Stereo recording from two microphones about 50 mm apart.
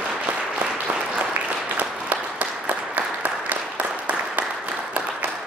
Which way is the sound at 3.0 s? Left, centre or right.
Right.